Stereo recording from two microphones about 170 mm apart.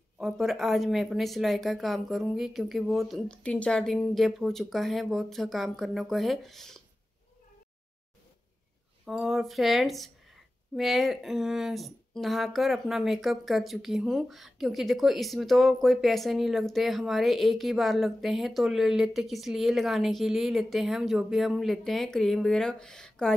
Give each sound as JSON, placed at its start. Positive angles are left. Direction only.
{"t": 0.2, "sound": "speech", "side_deg": 0}
{"t": 9.0, "sound": "speech", "side_deg": 0}